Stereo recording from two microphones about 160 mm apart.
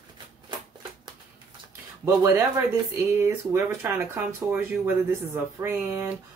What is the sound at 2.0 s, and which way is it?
Speech, 15° right (ahead or behind).